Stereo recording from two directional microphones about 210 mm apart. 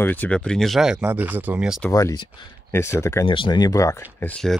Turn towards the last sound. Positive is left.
turn(degrees=5)  # may be behind; listen again after turning